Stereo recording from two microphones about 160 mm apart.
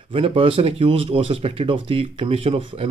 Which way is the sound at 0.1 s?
35° right (ahead or behind).